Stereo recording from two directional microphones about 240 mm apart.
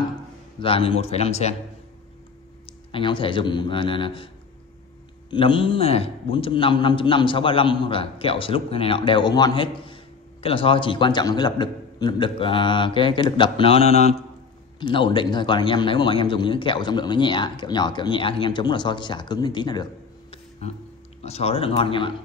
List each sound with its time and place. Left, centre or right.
0.6 s a man's voice: left
2.9 s a man's voice: left
5.3 s a man's voice: left